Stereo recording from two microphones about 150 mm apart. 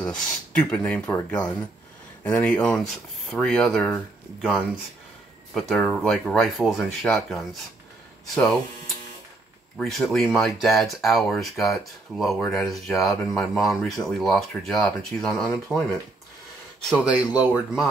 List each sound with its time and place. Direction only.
0.0 s speech: 5° left (ahead or behind)
5.5 s speech: centre (ahead or behind)
16.9 s speech: 10° right (ahead or behind)